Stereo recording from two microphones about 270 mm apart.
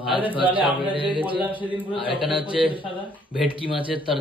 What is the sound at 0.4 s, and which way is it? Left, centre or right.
Speech, centre.